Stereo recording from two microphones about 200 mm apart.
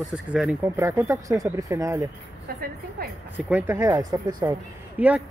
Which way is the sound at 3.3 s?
10° right (ahead or behind).